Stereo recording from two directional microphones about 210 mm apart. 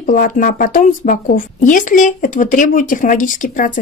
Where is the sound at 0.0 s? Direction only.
40° left (ahead or behind).